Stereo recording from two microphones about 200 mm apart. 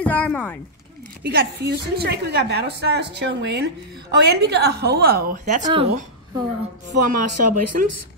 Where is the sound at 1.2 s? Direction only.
50° right (ahead or behind).